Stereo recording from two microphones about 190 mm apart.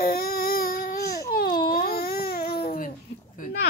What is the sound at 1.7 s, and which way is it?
Babbling, 50° left (ahead or behind).